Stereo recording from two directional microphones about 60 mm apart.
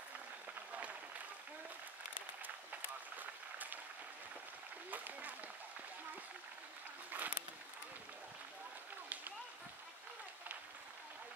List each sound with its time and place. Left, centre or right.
2.4 s applause: right
4.9 s applause: right
7.1 s a sound: right